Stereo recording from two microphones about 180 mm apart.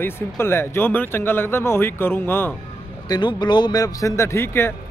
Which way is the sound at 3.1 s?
25° left (ahead or behind).